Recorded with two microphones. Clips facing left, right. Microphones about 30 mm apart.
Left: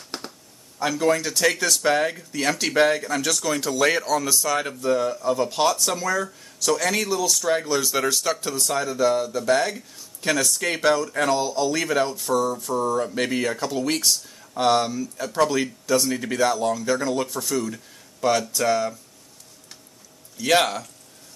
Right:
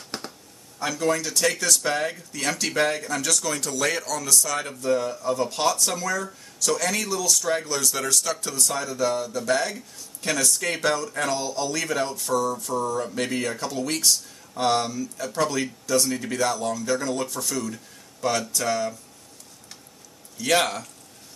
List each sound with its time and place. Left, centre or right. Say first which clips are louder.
0.1 s a sound: even; centre
0.7 s speech: left 3 dB; centre
20.3 s a man's voice: left 2 dB; centre